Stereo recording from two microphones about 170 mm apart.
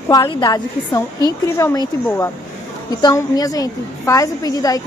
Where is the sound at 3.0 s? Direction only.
25° left (ahead or behind).